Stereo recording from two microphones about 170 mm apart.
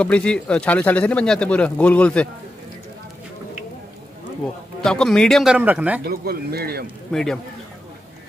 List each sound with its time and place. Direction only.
0.0 s speech: 5° left (ahead or behind)
4.8 s a man's voice: 5° left (ahead or behind)
6.0 s speech: 65° right (ahead or behind)
7.1 s a man's voice: 5° left (ahead or behind)